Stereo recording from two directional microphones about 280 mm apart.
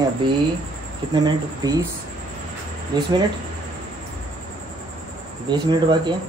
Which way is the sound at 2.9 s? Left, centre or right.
Centre.